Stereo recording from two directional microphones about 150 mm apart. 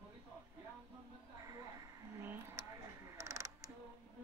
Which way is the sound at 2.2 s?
15° right (ahead or behind).